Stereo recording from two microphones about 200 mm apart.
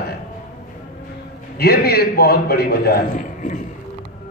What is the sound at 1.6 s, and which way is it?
A man's voice, 50° left (ahead or behind).